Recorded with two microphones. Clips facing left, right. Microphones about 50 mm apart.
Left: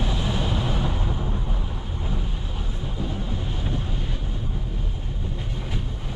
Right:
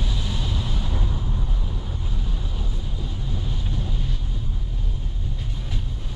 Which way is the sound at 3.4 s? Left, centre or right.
Left.